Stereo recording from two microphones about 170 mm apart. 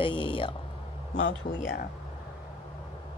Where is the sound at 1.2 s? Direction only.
90° left.